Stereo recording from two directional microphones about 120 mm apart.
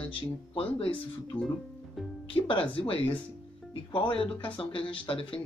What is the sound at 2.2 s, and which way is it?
Speech, 45° left (ahead or behind).